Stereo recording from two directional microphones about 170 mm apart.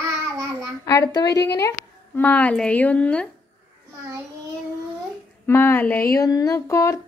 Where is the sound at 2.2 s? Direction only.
10° left (ahead or behind).